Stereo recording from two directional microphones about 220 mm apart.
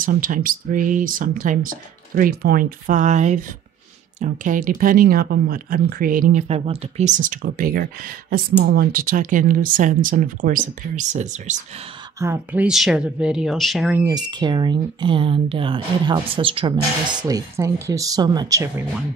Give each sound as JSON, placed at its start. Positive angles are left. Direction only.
{"t": 0.0, "sound": "speech", "side_deg": -40}
{"t": 12.2, "sound": "speech", "side_deg": -10}
{"t": 14.0, "sound": "speech", "side_deg": -20}